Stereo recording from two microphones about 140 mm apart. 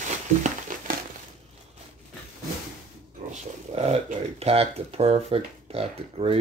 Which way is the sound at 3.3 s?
50° right (ahead or behind).